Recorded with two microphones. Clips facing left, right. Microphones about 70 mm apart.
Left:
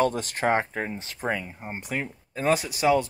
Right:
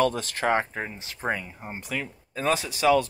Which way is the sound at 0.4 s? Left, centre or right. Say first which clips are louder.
Left 1 dB; left.